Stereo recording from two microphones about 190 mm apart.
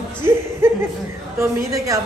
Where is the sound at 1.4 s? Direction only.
15° right (ahead or behind).